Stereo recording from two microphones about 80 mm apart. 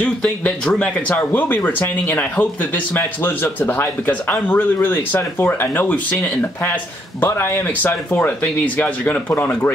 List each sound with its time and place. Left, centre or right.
0.0 s speech: centre